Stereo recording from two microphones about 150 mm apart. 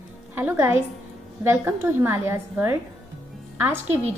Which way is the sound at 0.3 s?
15° right (ahead or behind).